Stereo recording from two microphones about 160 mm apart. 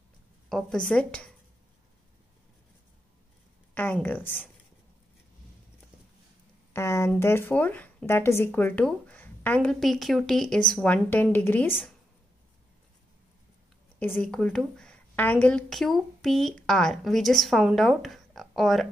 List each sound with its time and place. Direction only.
0.5 s a woman's voice: 5° left (ahead or behind)
3.7 s speech: 10° left (ahead or behind)
6.7 s speech: 15° left (ahead or behind)
13.9 s a woman's voice: 10° left (ahead or behind)